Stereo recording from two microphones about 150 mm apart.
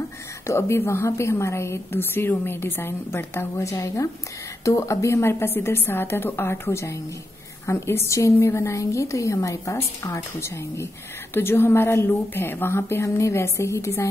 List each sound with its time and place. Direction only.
0.5 s a woman's voice: 15° left (ahead or behind)